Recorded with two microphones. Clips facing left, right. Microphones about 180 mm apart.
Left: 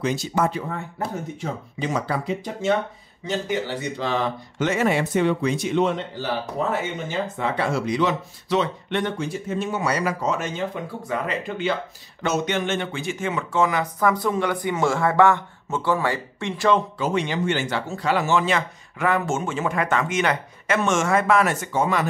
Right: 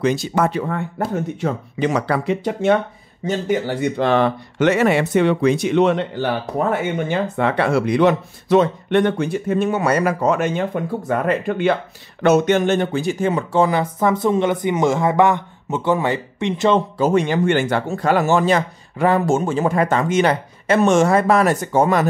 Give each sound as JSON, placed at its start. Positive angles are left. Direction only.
{"t": 0.0, "sound": "speech", "side_deg": -65}
{"t": 3.3, "sound": "speech", "side_deg": -50}
{"t": 17.0, "sound": "speech", "side_deg": -50}